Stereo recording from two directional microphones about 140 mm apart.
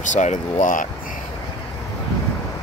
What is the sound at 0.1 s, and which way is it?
Speech, 60° left (ahead or behind).